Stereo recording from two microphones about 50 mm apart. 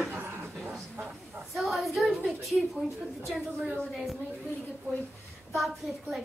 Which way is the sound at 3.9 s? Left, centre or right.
Centre.